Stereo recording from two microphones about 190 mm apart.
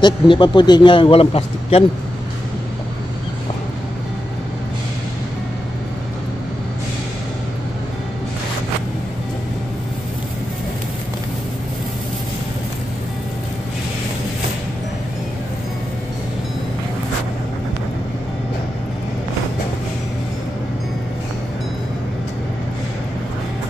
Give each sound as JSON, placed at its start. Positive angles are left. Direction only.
{"t": 0.0, "sound": "a man's voice", "side_deg": 25}